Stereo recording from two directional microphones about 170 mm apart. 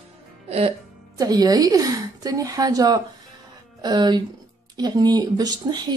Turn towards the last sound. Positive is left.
turn(degrees=-25)  # may be behind; listen again after turning